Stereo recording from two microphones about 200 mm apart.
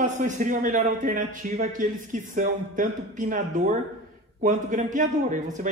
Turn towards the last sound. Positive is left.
turn(degrees=-40)  # may be behind; listen again after turning